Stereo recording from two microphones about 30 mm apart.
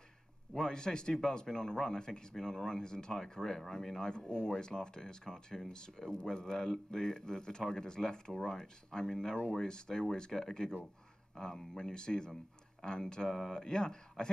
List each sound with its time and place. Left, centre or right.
0.5 s speech: left